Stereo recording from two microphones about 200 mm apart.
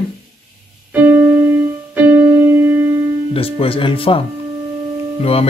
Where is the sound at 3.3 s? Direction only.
30° left (ahead or behind).